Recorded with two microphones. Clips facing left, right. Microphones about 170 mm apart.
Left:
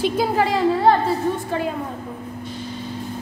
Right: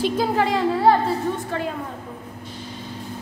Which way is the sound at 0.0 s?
5° left (ahead or behind).